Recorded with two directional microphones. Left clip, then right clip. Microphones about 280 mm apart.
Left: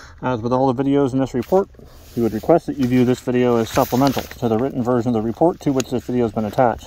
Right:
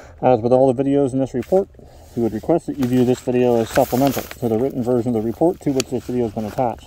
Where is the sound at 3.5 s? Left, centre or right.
Centre.